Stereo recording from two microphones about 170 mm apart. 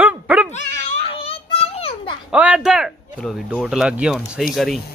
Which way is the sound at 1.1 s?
35° left (ahead or behind).